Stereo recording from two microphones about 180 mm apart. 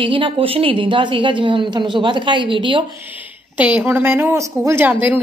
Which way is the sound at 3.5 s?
10° right (ahead or behind).